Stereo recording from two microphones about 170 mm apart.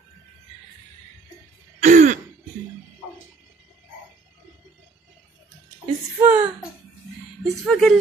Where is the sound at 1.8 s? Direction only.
50° right (ahead or behind).